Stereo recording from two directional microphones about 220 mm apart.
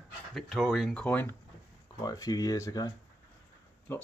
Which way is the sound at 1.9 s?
15° left (ahead or behind).